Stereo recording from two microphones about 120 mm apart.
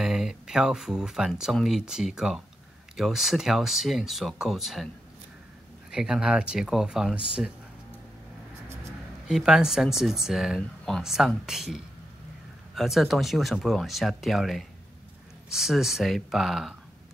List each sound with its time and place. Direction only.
0.0 s speech: 5° right (ahead or behind)
5.9 s speech: 5° right (ahead or behind)
9.3 s speech: 5° right (ahead or behind)